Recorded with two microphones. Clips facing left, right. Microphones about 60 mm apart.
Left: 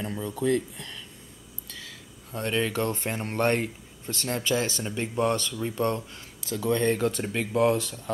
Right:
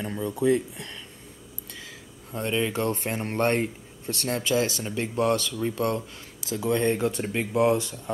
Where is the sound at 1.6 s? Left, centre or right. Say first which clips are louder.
Even; right.